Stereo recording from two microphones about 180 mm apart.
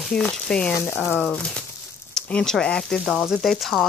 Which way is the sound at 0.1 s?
5° left (ahead or behind).